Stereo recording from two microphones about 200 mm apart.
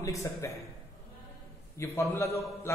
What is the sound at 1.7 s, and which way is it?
Speech, 15° left (ahead or behind).